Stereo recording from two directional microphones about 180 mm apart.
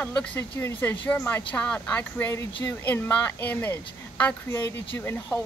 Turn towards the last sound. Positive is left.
turn(degrees=10)  # may be behind; listen again after turning